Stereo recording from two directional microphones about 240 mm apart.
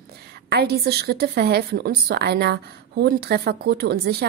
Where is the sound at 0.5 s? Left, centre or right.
Right.